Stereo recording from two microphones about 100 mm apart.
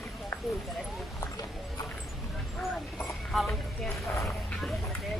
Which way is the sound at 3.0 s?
Centre (ahead or behind).